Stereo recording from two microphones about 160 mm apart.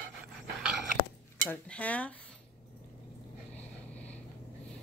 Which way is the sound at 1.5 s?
10° left (ahead or behind).